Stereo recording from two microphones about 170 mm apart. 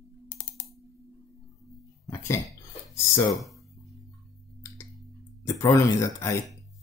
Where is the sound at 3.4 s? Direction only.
Centre (ahead or behind).